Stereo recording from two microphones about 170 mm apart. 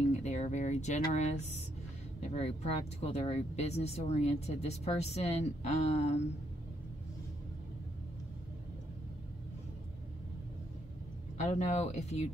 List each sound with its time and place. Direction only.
0.1 s speech: 45° left (ahead or behind)
11.3 s speech: 45° left (ahead or behind)